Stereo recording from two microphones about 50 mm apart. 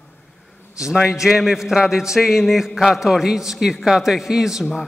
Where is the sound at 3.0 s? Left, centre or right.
Centre.